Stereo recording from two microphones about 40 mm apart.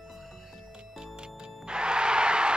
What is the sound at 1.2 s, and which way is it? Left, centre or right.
Music, right.